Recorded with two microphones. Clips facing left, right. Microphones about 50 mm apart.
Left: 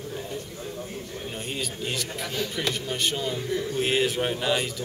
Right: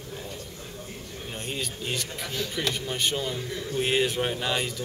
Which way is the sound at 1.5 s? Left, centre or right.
Centre.